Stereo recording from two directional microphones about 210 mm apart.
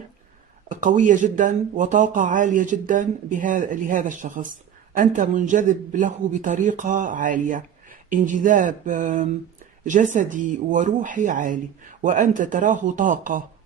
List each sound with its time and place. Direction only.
0.7 s speech: 35° right (ahead or behind)